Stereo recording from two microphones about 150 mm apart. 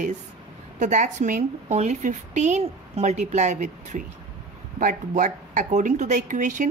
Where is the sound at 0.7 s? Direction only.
55° right (ahead or behind).